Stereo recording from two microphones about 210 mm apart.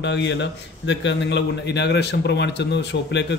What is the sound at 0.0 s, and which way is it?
A man's voice, 55° left (ahead or behind).